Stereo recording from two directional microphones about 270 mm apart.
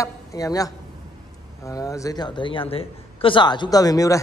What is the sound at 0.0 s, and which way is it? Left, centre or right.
A man's voice, centre.